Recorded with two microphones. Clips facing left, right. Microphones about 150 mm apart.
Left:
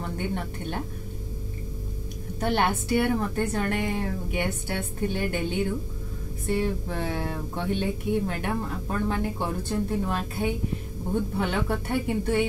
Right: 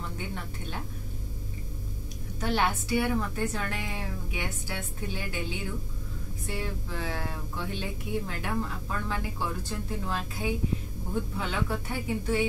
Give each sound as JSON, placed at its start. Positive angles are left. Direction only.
{"t": 2.4, "sound": "a woman's voice", "side_deg": 55}